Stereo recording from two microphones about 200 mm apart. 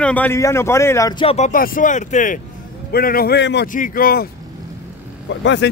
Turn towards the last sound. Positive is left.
turn(degrees=65)  # may be behind; listen again after turning